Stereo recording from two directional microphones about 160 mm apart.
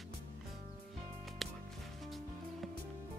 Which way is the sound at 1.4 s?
Centre (ahead or behind).